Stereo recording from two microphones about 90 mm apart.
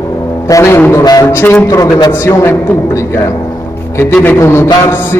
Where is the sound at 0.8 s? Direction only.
30° left (ahead or behind).